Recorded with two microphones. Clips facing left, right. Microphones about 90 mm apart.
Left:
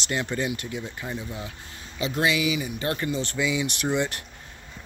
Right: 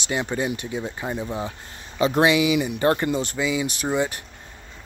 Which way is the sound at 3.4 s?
10° right (ahead or behind).